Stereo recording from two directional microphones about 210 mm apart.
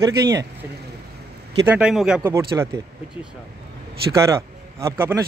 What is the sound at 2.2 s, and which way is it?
Speech, 15° right (ahead or behind).